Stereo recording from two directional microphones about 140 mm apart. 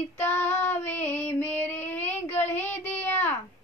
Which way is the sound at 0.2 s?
15° left (ahead or behind).